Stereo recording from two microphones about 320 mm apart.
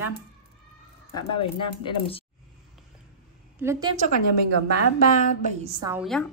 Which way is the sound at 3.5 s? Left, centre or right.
Centre.